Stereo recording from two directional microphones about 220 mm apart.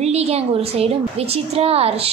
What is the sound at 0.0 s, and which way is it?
A woman's voice, 30° right (ahead or behind).